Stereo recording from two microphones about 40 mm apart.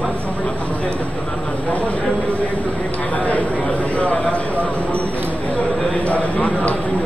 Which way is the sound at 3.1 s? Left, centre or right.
Left.